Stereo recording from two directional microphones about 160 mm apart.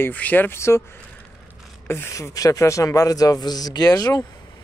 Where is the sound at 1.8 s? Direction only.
15° left (ahead or behind).